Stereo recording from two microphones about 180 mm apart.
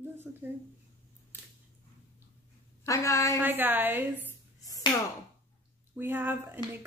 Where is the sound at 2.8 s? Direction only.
15° left (ahead or behind).